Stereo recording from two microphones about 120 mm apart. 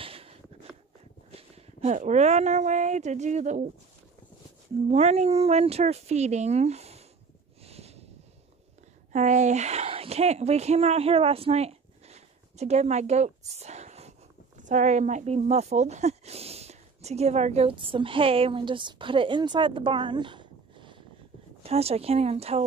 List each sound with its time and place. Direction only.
0.0 s a sound: 50° right (ahead or behind)
1.8 s speech: 80° right
4.8 s speech: 60° right (ahead or behind)
7.6 s a sound: 60° right (ahead or behind)
9.1 s speech: 85° right; by 14.1 s 65° right (ahead or behind)
14.6 s speech: 90° right; by 17.7 s 60° right (ahead or behind)
17.7 s a woman's voice: 45° right (ahead or behind)
21.6 s speech: 60° right (ahead or behind)